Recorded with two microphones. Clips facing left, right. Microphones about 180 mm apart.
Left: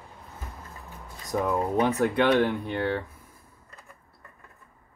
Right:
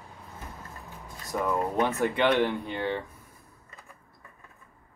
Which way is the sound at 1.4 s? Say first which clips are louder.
Left 2 dB; 15° left (ahead or behind).